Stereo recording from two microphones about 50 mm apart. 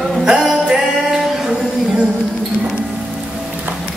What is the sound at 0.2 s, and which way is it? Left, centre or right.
Music, centre.